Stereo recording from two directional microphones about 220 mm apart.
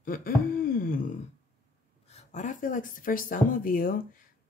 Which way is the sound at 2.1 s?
35° left (ahead or behind).